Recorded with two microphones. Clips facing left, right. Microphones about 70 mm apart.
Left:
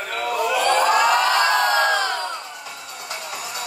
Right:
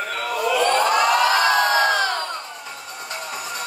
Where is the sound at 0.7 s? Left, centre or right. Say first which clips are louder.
Left 1 dB; centre.